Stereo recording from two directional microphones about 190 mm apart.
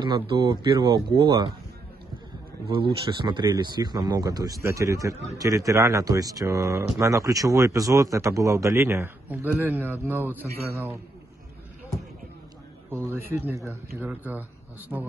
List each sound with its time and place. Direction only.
0.0 s a man's voice: 25° right (ahead or behind)
3.1 s a man's voice: 25° right (ahead or behind)
12.9 s speech: 10° right (ahead or behind)